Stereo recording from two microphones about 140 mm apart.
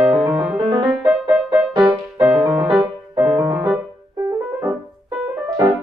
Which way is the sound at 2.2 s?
5° right (ahead or behind).